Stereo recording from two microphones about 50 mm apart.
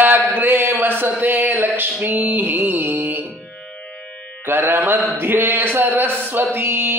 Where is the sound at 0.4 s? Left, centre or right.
Right.